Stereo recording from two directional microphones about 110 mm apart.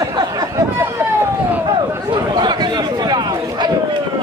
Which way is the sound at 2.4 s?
40° right (ahead or behind).